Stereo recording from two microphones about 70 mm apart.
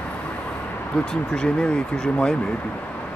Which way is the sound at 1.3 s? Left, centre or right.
Centre.